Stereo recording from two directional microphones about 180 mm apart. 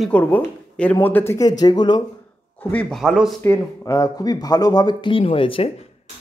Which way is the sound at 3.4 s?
15° left (ahead or behind).